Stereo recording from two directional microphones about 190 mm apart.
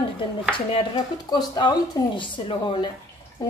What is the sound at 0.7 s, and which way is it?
Speech, 25° left (ahead or behind).